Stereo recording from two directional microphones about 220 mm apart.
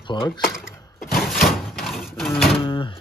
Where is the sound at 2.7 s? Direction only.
20° left (ahead or behind).